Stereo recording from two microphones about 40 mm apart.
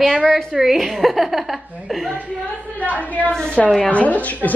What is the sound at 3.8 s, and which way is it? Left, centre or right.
Speech, left.